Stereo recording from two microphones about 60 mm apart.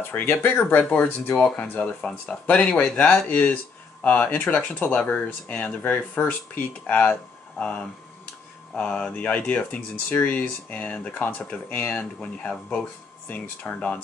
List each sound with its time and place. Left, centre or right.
0.1 s speech: left
2.7 s speech: centre
3.3 s speech: left; by 12.8 s centre
13.3 s speech: left